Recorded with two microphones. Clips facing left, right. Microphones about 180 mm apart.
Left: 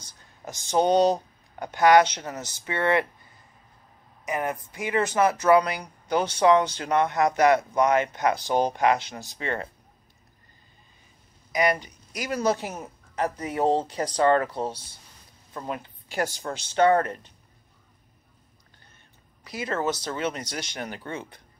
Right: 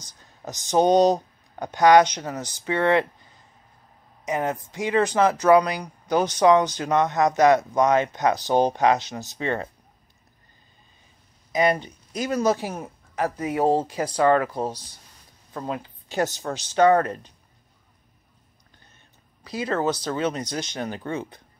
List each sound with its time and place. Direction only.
0.5 s speech: 20° right (ahead or behind)
4.2 s a woman's voice: 20° right (ahead or behind)
11.5 s speech: 25° right (ahead or behind)
12.5 s speech: 10° right (ahead or behind)
19.5 s speech: 20° right (ahead or behind)